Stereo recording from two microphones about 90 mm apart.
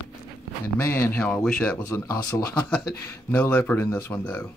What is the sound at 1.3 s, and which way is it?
Speech, 10° left (ahead or behind).